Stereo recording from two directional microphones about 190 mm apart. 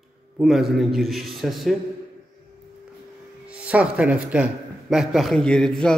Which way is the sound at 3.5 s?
5° right (ahead or behind).